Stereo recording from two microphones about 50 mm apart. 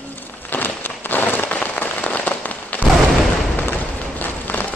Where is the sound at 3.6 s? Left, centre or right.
Left.